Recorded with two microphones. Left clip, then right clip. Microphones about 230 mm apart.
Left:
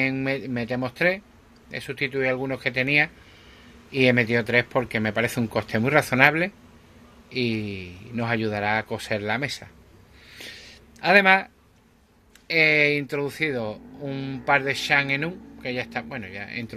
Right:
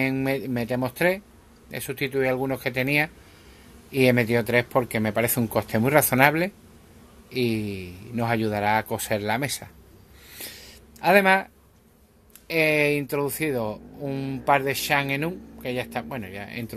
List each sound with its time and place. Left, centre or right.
0.0 s speech: centre
10.3 s a sound: centre
12.4 s speech: centre